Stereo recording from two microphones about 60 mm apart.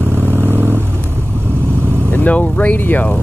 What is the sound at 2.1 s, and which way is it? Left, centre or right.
Speech, left.